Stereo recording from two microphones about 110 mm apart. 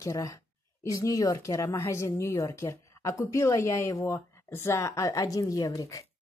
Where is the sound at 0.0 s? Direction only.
30° left (ahead or behind).